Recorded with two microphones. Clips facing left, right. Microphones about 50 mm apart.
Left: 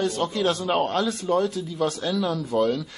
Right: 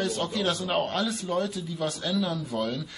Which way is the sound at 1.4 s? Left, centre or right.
Left.